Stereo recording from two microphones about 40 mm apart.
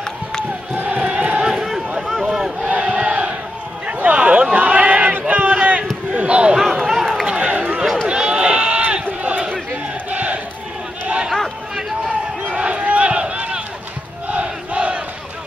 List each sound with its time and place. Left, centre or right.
0.0 s crowd: centre
0.9 s chant: right
1.4 s a sound: centre
2.7 s battle cry: right
3.8 s a sound: right
6.1 s basketball bounce: right
6.6 s run: centre
7.2 s run: right
8.1 s sheep: right
10.1 s battle cry: right
12.4 s crowd: right